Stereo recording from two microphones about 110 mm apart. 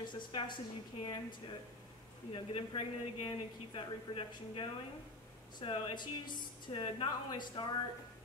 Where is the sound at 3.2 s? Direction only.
50° left (ahead or behind).